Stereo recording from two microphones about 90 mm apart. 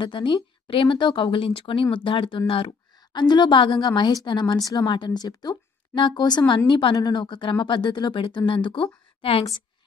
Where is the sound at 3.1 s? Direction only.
55° left (ahead or behind); by 7.0 s 75° left (ahead or behind).